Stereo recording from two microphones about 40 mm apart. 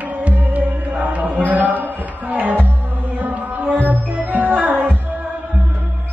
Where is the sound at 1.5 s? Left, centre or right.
Right.